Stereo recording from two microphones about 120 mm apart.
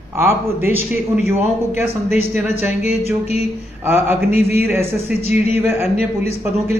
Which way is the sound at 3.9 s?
15° right (ahead or behind).